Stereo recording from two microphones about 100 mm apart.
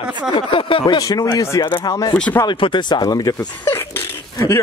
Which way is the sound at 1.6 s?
55° left (ahead or behind).